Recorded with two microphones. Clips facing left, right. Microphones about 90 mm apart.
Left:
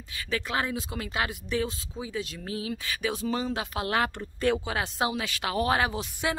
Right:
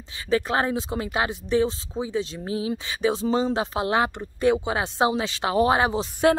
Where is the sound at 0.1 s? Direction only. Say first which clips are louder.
Right 7 dB; 30° right (ahead or behind).